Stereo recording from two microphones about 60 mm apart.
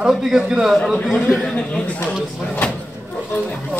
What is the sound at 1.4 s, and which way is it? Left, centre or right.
Speech, centre.